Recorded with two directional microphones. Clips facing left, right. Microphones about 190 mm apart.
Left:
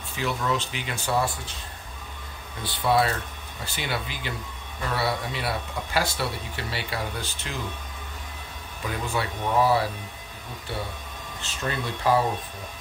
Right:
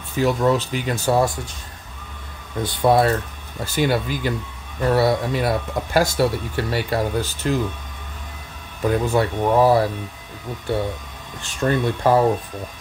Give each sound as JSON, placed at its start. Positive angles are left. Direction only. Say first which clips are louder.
{"t": 0.2, "sound": "speech", "louder": "right 9 dB", "side_deg": -40}
{"t": 2.6, "sound": "speech", "louder": "right 6 dB", "side_deg": -45}
{"t": 8.8, "sound": "speech", "louder": "right 10 dB", "side_deg": -45}
{"t": 11.6, "sound": "speech", "louder": "right 8 dB", "side_deg": -50}